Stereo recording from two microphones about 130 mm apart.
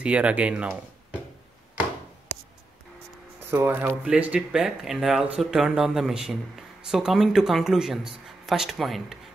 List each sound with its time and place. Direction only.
0.0 s speech: 10° right (ahead or behind)
3.4 s speech: 15° right (ahead or behind); by 9.2 s centre (ahead or behind)